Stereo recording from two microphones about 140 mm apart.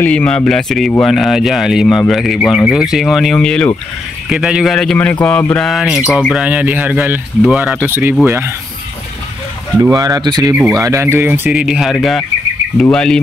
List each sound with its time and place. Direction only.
0.0 s speech: 10° left (ahead or behind)
4.3 s speech: 5° right (ahead or behind)
9.8 s speech: 25° right (ahead or behind)
11.6 s speech: 5° right (ahead or behind)